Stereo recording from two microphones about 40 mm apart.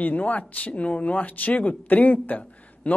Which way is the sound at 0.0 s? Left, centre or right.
Left.